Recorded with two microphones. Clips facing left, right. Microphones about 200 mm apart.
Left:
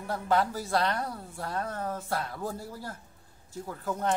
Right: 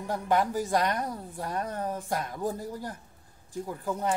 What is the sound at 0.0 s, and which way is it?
A woman's voice, 15° right (ahead or behind).